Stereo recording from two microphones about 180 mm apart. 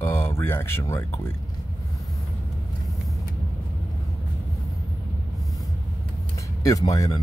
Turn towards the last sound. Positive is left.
turn(degrees=20)  # may be behind; listen again after turning